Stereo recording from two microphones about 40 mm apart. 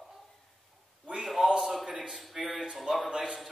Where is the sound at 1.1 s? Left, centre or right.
Centre.